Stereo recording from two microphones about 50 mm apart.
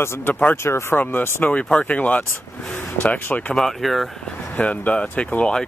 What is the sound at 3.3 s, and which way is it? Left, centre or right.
Speech, left.